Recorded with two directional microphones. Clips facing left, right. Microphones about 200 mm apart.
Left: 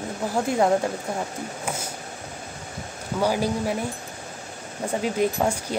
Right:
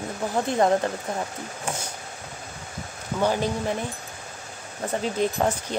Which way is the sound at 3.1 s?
10° left (ahead or behind).